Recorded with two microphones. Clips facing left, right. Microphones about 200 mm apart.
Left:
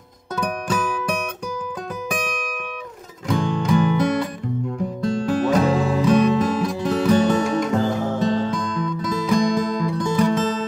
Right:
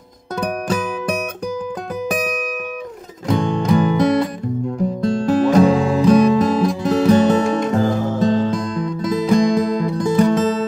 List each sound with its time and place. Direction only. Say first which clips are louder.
0.4 s music: right 3 dB; 35° right (ahead or behind)
3.3 s music: right 3 dB; 35° right (ahead or behind)